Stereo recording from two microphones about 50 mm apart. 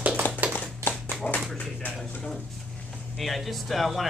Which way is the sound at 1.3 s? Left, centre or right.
Left.